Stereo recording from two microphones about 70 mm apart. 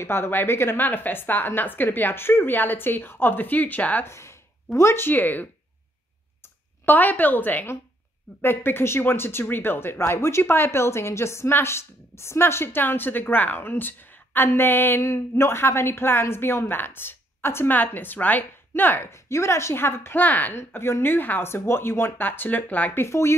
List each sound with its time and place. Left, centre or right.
0.0 s a woman's voice: left
4.0 s a woman's voice: left
19.0 s speech: left
20.5 s speech: left
23.0 s speech: left